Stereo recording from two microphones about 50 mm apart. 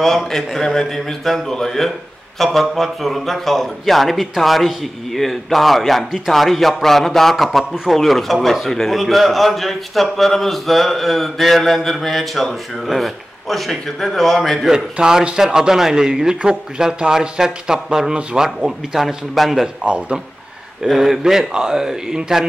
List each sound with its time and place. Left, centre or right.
0.0 s a man's voice: centre
14.7 s a man's voice: centre
18.9 s a man's voice: centre
19.8 s speech: right
20.8 s a man's voice: centre